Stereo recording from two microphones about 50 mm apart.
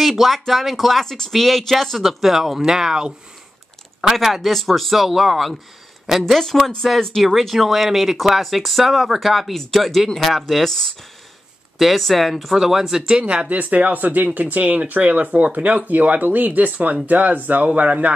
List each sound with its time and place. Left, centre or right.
0.0 s speech: centre
6.3 s speech: centre
13.0 s speech: centre